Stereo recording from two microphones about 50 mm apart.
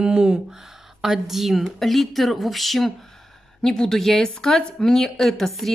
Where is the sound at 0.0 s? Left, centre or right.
Centre.